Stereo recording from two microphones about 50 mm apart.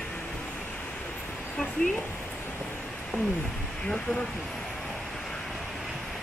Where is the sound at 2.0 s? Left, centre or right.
Left.